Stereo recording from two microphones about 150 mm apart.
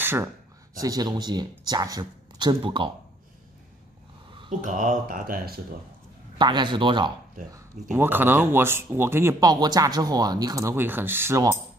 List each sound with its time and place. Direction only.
0.0 s speech: 15° right (ahead or behind); by 2.9 s 35° right (ahead or behind)
4.6 s speech: 55° right (ahead or behind); by 5.6 s 80° right
6.3 s a man's voice: 30° right (ahead or behind)
7.5 s speech: 15° right (ahead or behind)